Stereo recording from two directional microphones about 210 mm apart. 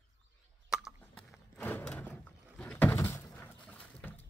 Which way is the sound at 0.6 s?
Centre (ahead or behind).